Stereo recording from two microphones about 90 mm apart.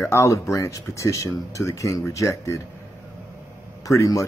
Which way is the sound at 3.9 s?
35° left (ahead or behind).